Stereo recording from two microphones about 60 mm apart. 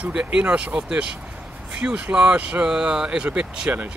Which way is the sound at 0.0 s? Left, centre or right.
Centre.